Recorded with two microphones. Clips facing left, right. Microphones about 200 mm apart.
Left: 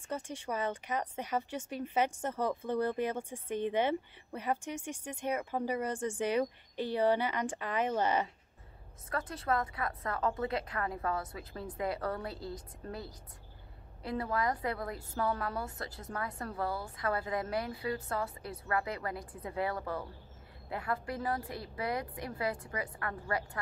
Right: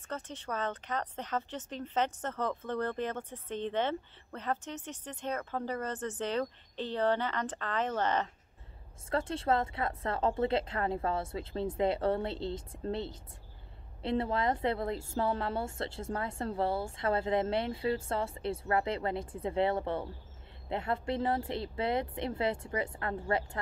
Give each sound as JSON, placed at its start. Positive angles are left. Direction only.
{"t": 0.1, "sound": "speech", "side_deg": 10}
{"t": 9.1, "sound": "a woman's voice", "side_deg": -25}